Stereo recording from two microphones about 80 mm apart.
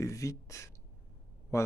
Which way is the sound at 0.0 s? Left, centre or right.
Left.